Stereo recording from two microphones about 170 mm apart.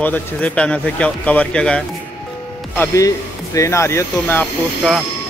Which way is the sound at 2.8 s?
20° left (ahead or behind).